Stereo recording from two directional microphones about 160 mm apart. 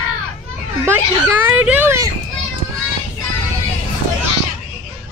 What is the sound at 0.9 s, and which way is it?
Speech, 15° right (ahead or behind).